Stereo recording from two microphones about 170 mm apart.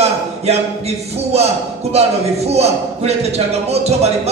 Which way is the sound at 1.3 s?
40° right (ahead or behind).